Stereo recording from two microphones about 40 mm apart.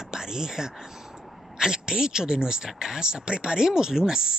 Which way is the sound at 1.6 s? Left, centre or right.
Centre.